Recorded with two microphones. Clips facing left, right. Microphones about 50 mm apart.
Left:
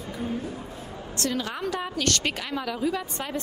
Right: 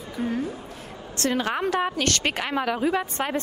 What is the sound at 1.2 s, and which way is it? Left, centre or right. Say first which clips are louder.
A woman's voice: right 5 dB; right.